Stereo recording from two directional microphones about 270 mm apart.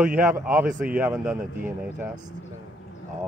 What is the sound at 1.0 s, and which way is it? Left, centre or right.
Speech, centre.